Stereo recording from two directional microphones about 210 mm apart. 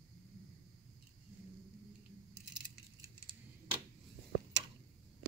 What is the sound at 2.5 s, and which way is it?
Keys jangling, 20° right (ahead or behind).